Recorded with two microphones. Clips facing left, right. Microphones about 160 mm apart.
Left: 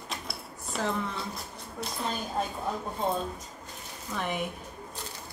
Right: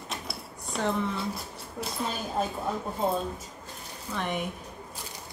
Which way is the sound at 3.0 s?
5° right (ahead or behind).